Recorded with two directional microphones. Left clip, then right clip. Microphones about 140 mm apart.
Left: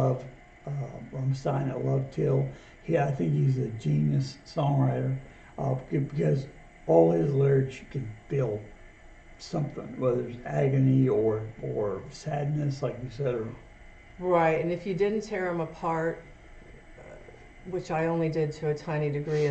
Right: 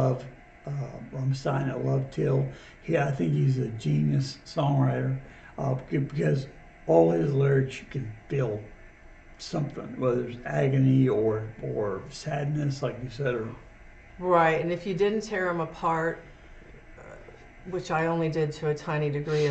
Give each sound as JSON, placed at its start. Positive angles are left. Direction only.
{"t": 0.0, "sound": "a sound", "side_deg": -5}
{"t": 0.8, "sound": "speech", "side_deg": -5}
{"t": 11.7, "sound": "speech", "side_deg": -20}
{"t": 12.1, "sound": "speech", "side_deg": -5}
{"t": 14.3, "sound": "a woman's voice", "side_deg": 10}
{"t": 17.7, "sound": "a woman's voice", "side_deg": 10}